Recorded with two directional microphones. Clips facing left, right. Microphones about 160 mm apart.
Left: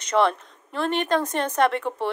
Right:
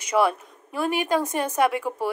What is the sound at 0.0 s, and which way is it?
Speech, 10° right (ahead or behind).